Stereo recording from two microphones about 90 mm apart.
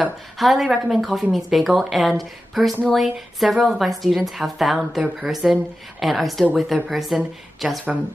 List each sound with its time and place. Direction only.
0.4 s a woman's voice: centre (ahead or behind)